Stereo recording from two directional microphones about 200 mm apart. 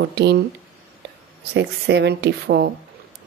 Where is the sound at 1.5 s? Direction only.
60° right (ahead or behind).